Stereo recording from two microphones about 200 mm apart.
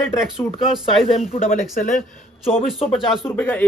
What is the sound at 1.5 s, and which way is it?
Speech, 45° left (ahead or behind).